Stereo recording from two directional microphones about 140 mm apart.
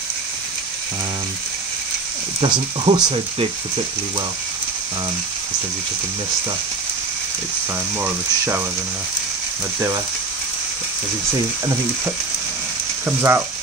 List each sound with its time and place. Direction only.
2.4 s speech: 35° right (ahead or behind)
8.0 s frying: 15° right (ahead or behind)
13.0 s frying: 15° right (ahead or behind)